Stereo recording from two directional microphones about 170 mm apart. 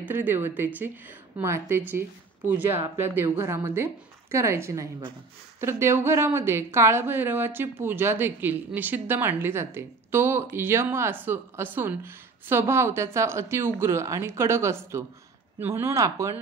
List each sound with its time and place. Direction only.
0.0 s a woman's voice: 10° right (ahead or behind)